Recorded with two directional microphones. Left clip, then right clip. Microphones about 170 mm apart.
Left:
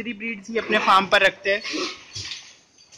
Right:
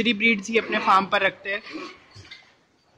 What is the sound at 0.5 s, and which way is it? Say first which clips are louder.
Speech: left 6 dB; 10° right (ahead or behind).